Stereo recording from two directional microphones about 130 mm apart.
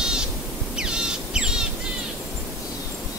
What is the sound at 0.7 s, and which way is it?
Bird, 5° right (ahead or behind).